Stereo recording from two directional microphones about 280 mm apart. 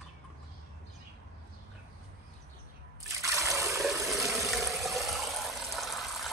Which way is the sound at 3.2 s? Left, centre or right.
Centre.